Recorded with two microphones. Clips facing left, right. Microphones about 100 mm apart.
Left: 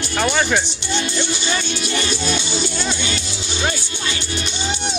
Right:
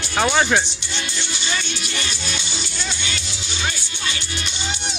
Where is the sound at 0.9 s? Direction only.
50° left (ahead or behind).